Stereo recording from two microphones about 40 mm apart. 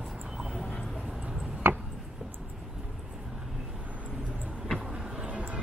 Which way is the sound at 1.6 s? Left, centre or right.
Right.